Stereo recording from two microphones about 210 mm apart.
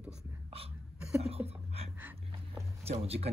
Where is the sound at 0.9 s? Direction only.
5° right (ahead or behind).